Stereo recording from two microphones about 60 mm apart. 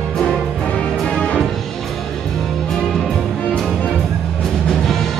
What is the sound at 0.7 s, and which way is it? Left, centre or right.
Music, centre.